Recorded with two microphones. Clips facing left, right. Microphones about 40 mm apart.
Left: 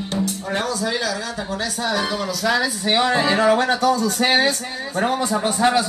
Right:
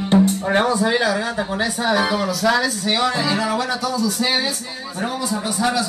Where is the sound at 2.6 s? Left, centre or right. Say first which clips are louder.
Left 1 dB; centre.